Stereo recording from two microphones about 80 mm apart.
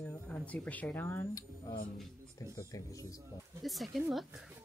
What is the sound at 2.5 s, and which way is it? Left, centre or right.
Speech, left.